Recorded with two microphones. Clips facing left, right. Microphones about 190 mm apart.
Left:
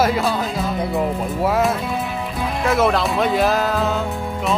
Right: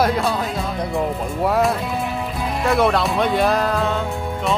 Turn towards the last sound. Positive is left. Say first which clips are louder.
# even
turn(degrees=0)  # may be behind; listen again after turning